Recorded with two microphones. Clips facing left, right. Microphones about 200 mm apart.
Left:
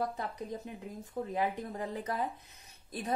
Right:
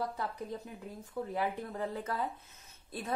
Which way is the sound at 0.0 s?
20° left (ahead or behind).